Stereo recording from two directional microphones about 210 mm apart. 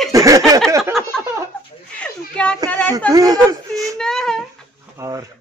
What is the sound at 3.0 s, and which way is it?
A man's voice, 15° right (ahead or behind).